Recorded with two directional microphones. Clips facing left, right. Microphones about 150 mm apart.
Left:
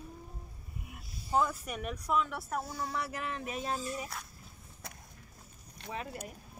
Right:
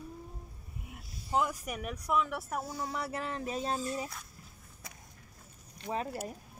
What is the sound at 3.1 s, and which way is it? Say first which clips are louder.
Speech: right 2 dB; 35° right (ahead or behind).